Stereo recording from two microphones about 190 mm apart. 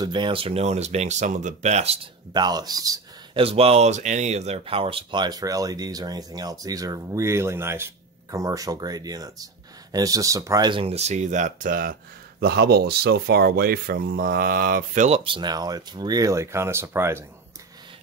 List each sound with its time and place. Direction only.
0.0 s speech: 25° right (ahead or behind)
2.3 s speech: 20° right (ahead or behind)
3.4 s speech: 30° right (ahead or behind); by 15.0 s 50° right (ahead or behind)
15.0 s speech: 30° right (ahead or behind); by 17.2 s 15° right (ahead or behind)